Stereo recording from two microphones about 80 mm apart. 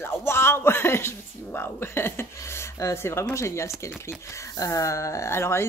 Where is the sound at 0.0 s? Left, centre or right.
Left.